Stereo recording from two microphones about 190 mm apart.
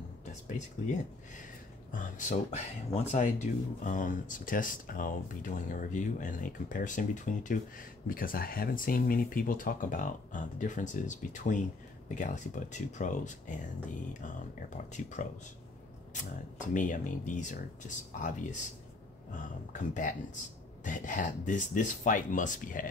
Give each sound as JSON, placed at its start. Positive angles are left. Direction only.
{"t": 0.5, "sound": "speech", "side_deg": 40}